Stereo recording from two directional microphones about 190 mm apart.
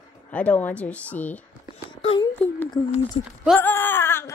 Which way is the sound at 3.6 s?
10° left (ahead or behind).